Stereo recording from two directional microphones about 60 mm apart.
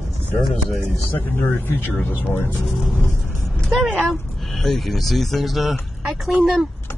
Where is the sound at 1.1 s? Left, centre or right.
Left.